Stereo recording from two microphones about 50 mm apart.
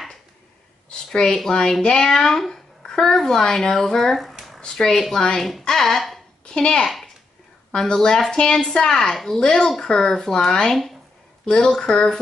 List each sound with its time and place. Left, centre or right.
0.8 s a woman's voice: centre
6.4 s a sound: centre
6.8 s a child's voice: centre
9.4 s a woman's voice: centre